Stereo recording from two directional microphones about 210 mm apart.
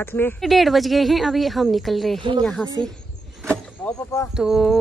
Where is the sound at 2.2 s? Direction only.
25° right (ahead or behind).